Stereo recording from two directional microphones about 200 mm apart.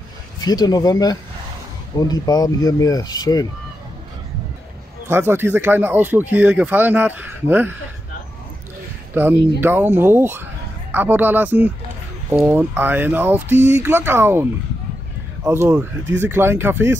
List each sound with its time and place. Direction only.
0.4 s speech: 20° left (ahead or behind)
5.0 s speech: 10° right (ahead or behind)
9.1 s speech: 10° right (ahead or behind)
15.4 s speech: 10° right (ahead or behind)